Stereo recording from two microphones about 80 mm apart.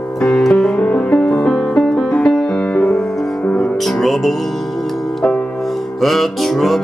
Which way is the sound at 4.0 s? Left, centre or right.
Centre.